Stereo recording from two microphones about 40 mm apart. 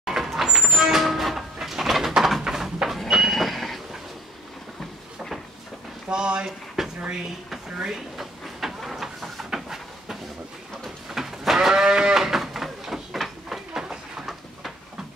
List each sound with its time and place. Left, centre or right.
0.0 s vehicle: centre
0.6 s a sound: centre
3.1 s vehicle: centre
6.0 s speech: right
6.8 s a sound: centre
7.4 s vehicle: centre
11.1 s sheep: centre